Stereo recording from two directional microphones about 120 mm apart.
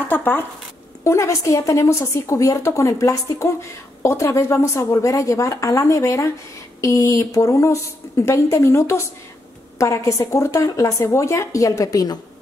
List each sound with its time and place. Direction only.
0.1 s a woman's voice: 15° left (ahead or behind); by 12.2 s 30° left (ahead or behind)